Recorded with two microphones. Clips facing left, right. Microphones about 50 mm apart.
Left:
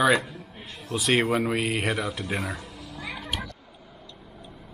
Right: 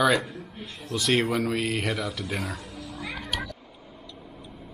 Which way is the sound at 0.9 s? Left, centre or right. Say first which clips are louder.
Left 1 dB; centre.